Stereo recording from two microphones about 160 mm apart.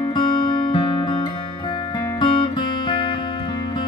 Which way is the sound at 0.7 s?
30° left (ahead or behind).